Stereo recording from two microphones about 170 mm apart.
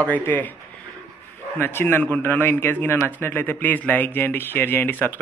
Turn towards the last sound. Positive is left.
turn(degrees=10)  # may be behind; listen again after turning